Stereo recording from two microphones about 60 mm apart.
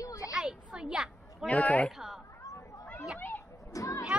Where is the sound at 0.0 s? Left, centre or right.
Left.